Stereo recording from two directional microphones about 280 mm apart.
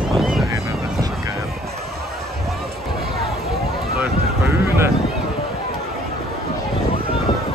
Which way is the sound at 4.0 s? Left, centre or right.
Centre.